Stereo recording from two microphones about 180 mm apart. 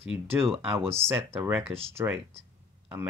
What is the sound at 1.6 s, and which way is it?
Speech, 35° right (ahead or behind).